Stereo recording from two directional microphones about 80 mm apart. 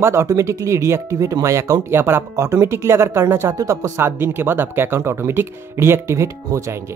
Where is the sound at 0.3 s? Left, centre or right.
Right.